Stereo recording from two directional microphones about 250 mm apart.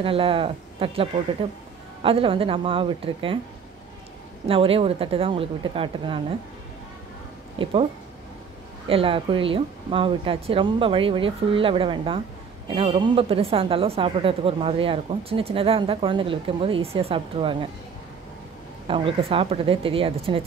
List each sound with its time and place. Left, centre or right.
0.0 s a woman's voice: right
4.5 s a woman's voice: right
7.6 s a woman's voice: right
8.8 s a woman's voice: right
18.9 s a woman's voice: right